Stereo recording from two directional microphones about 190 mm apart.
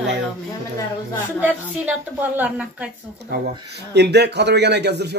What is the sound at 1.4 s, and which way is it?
A woman's voice, 10° right (ahead or behind).